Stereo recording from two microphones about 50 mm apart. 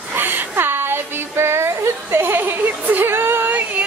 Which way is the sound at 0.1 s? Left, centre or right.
Right.